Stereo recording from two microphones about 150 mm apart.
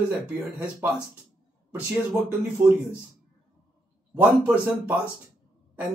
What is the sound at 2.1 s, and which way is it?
Speech, 20° right (ahead or behind).